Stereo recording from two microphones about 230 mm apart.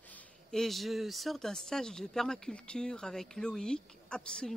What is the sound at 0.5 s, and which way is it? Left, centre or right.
Speech, centre.